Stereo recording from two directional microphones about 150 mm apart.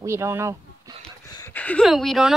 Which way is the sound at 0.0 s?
15° right (ahead or behind).